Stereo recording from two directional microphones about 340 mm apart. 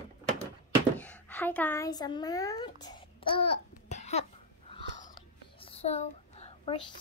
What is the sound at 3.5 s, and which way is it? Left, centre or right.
Cough, left.